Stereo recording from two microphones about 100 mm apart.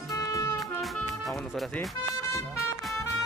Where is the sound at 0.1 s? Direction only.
35° left (ahead or behind).